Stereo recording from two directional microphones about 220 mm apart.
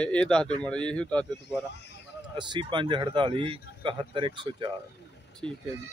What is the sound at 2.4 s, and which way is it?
Speech, 20° right (ahead or behind).